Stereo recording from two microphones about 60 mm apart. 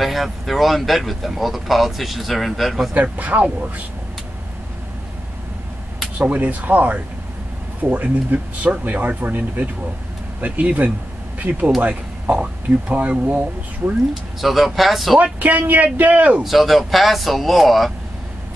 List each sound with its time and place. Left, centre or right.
0.0 s speech: centre
2.9 s speech: right
6.2 s speech: right
14.4 s speech: centre
15.3 s speech: right
16.4 s speech: centre